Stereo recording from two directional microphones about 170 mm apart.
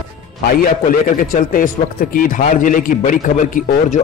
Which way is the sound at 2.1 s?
55° left (ahead or behind).